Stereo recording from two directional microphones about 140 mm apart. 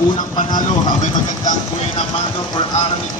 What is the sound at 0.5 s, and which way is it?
Speech, 65° left (ahead or behind).